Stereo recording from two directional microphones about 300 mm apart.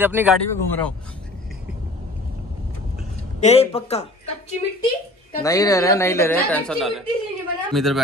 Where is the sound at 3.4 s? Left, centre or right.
Left.